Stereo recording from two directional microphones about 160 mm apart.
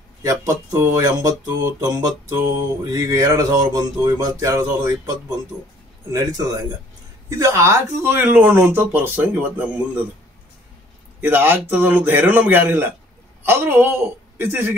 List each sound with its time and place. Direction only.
0.2 s mantra: 20° right (ahead or behind)
7.2 s speech: 20° right (ahead or behind)
11.1 s speech: 15° right (ahead or behind)